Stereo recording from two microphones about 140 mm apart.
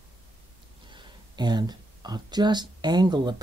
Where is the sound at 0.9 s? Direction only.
30° right (ahead or behind).